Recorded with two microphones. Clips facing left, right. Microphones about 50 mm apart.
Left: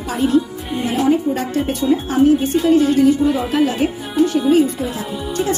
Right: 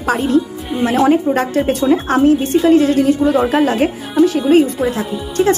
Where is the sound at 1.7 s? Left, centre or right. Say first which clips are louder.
Right 4 dB; right.